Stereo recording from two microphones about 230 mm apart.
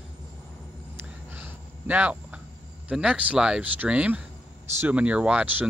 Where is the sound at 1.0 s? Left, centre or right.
Centre.